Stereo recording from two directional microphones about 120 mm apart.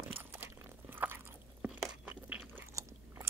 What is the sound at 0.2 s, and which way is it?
Crunch, 15° right (ahead or behind).